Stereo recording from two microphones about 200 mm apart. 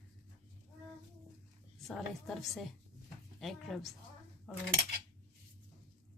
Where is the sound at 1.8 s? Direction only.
Centre (ahead or behind).